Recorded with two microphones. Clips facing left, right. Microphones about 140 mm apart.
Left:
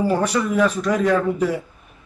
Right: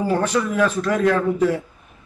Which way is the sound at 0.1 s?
10° left (ahead or behind).